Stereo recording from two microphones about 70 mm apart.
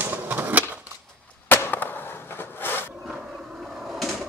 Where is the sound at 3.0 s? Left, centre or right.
Centre.